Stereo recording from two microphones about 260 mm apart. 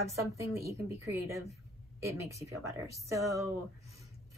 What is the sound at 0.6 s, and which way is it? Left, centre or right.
A woman's voice, centre.